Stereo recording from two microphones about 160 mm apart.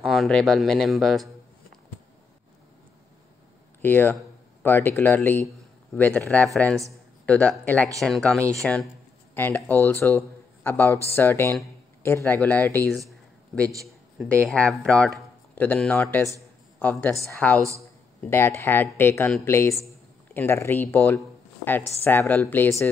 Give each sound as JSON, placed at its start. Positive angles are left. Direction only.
{"t": 0.0, "sound": "speech", "side_deg": 0}
{"t": 3.8, "sound": "speech", "side_deg": 10}
{"t": 8.4, "sound": "speech", "side_deg": -20}
{"t": 9.3, "sound": "speech", "side_deg": 10}
{"t": 14.3, "sound": "speech", "side_deg": 5}